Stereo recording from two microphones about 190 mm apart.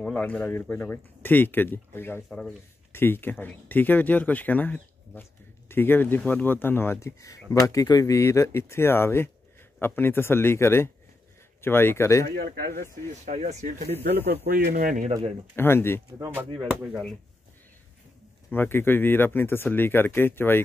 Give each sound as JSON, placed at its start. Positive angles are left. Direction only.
{"t": 0.0, "sound": "speech", "side_deg": 5}
{"t": 12.4, "sound": "speech", "side_deg": -55}
{"t": 13.2, "sound": "speech", "side_deg": -40}
{"t": 14.3, "sound": "speech", "side_deg": -55}
{"t": 15.5, "sound": "speech", "side_deg": 10}
{"t": 16.2, "sound": "speech", "side_deg": -10}
{"t": 18.5, "sound": "speech", "side_deg": 10}